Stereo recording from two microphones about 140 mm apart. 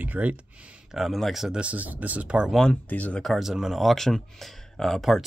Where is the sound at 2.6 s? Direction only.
10° left (ahead or behind).